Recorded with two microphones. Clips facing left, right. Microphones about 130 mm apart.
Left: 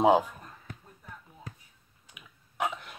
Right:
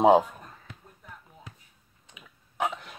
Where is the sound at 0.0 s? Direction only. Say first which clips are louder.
Right 3 dB; 30° right (ahead or behind).